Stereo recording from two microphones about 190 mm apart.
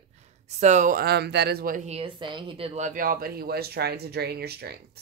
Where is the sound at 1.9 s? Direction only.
30° right (ahead or behind).